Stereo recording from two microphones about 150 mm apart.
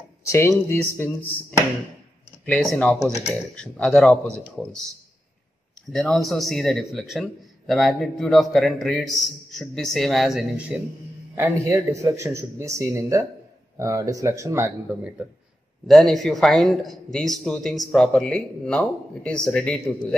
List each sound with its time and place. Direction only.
0.2 s speech: 20° left (ahead or behind)
2.4 s speech: 5° left (ahead or behind)
5.9 s speech: centre (ahead or behind)
11.3 s speech: 15° right (ahead or behind)
15.9 s speech: centre (ahead or behind)